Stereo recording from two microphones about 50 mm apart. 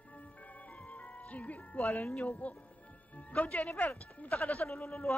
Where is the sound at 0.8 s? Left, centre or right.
Left.